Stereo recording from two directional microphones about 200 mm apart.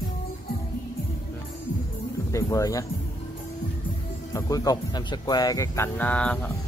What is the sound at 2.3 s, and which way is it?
Speech, 15° left (ahead or behind).